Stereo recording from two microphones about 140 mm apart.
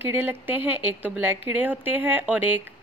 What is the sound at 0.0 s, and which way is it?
A woman's voice, 15° right (ahead or behind).